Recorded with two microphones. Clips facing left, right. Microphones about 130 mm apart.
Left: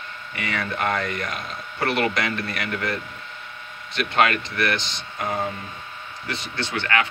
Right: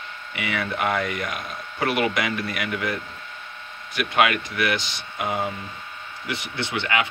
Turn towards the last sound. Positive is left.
turn(degrees=-15)  # may be behind; listen again after turning